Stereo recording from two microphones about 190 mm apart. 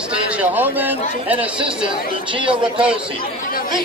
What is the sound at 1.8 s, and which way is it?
Speech, 25° right (ahead or behind).